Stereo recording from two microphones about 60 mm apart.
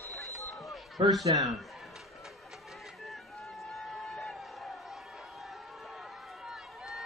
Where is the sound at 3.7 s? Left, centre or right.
Centre.